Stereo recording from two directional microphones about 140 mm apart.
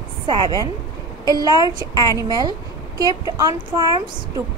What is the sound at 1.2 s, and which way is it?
A woman's voice, 25° right (ahead or behind).